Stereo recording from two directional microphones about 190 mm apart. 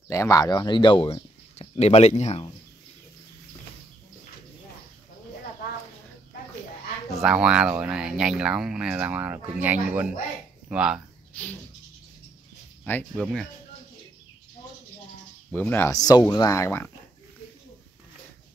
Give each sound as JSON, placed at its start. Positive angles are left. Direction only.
{"t": 0.1, "sound": "speech", "side_deg": 15}
{"t": 7.2, "sound": "speech", "side_deg": -5}
{"t": 11.3, "sound": "speech", "side_deg": 10}
{"t": 13.1, "sound": "speech", "side_deg": 0}
{"t": 15.5, "sound": "speech", "side_deg": 10}